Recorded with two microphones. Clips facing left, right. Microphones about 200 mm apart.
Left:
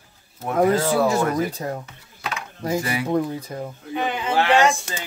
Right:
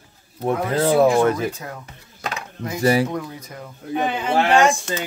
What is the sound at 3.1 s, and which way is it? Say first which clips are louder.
Speech: left 6 dB; 30° left (ahead or behind).